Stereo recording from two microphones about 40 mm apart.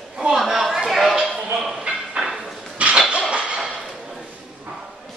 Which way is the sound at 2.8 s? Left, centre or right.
Right.